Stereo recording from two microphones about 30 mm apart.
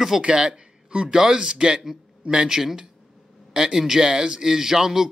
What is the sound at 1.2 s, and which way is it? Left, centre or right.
Speech, right.